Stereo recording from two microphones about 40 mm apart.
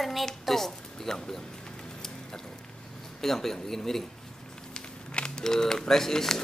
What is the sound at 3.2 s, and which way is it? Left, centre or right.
Speech, centre.